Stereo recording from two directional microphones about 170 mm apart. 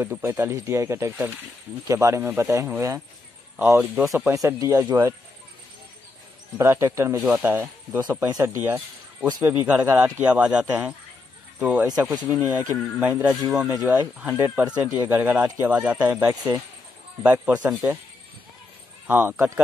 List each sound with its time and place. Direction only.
0.0 s speech: 15° right (ahead or behind)
4.3 s speech: 20° right (ahead or behind)
6.6 s speech: 15° right (ahead or behind)
19.0 s speech: 10° right (ahead or behind)